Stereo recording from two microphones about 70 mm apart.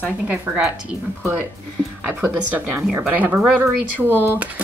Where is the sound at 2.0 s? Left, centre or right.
Right.